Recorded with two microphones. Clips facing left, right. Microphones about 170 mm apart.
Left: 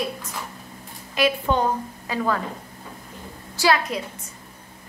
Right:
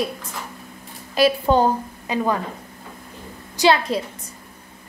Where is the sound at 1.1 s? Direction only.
35° right (ahead or behind).